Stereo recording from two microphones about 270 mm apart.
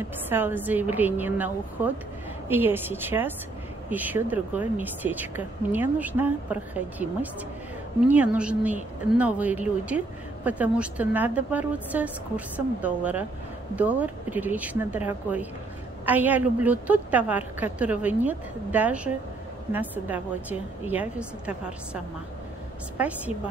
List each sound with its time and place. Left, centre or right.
0.3 s a woman's voice: centre